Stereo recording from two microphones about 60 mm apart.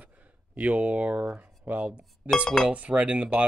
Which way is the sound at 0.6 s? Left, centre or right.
Right.